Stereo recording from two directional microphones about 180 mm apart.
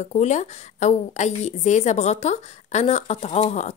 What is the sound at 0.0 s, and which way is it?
A woman's voice, 40° left (ahead or behind).